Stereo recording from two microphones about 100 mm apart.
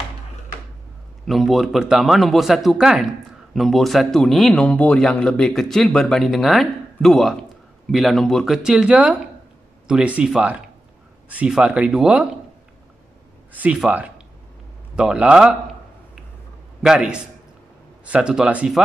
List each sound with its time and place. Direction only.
1.2 s speech: centre (ahead or behind)
8.6 s speech: 10° right (ahead or behind)
13.5 s speech: 15° right (ahead or behind)
16.8 s speech: 10° right (ahead or behind)